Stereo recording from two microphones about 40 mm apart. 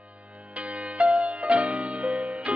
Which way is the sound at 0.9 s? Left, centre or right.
Right.